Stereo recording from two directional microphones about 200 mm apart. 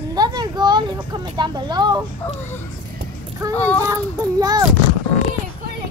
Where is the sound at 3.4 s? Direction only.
15° right (ahead or behind).